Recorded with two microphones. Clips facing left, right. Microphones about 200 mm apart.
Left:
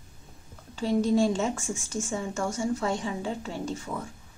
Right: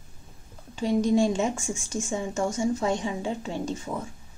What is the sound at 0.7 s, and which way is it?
A woman's voice, 15° right (ahead or behind).